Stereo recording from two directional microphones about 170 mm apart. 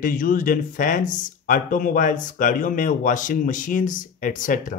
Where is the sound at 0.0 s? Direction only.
50° left (ahead or behind).